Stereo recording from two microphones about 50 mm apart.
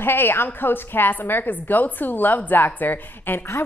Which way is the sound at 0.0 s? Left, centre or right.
Left.